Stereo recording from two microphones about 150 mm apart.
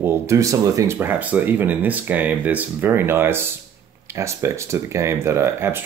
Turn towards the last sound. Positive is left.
turn(degrees=-15)  # may be behind; listen again after turning